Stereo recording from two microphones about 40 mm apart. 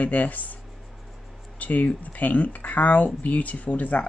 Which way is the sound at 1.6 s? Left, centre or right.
Left.